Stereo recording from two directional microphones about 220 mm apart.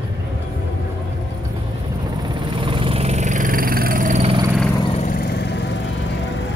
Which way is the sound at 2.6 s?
25° right (ahead or behind).